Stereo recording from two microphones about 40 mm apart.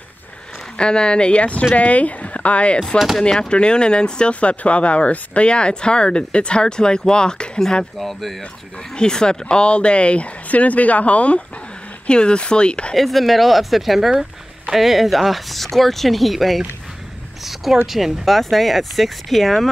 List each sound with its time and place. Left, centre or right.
0.7 s speech: left
8.0 s speech: centre
8.9 s speech: centre
12.1 s speech: left
12.9 s speech: centre
17.9 s speech: centre